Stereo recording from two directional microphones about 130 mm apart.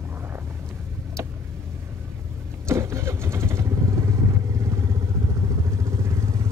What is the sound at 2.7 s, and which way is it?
Vehicle, 20° right (ahead or behind).